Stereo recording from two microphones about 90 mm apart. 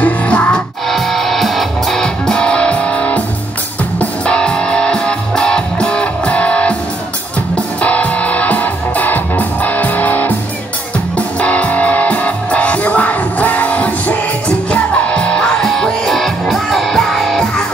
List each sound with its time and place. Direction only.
0.0 s music: 15° left (ahead or behind)
0.8 s music: 5° left (ahead or behind)